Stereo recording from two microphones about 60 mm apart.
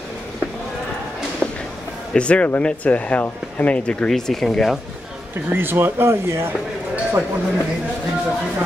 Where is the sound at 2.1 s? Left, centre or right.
Centre.